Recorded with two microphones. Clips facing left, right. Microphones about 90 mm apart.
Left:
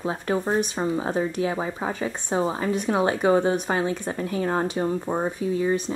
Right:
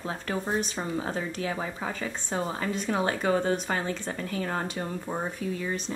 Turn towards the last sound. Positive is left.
turn(degrees=20)  # may be behind; listen again after turning